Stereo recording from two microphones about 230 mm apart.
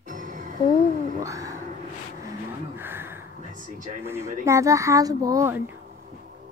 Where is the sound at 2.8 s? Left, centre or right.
Centre.